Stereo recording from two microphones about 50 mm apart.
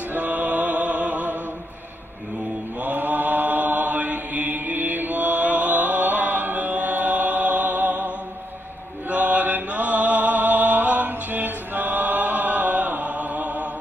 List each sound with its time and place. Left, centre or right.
0.1 s music: right
2.8 s mantra: right
9.1 s mantra: right